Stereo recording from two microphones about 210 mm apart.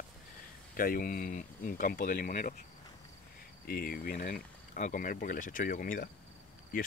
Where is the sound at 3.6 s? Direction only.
45° left (ahead or behind).